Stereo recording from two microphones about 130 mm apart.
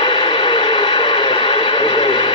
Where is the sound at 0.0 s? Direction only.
40° left (ahead or behind).